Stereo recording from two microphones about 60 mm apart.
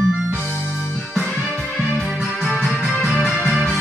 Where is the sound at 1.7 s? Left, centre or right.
Centre.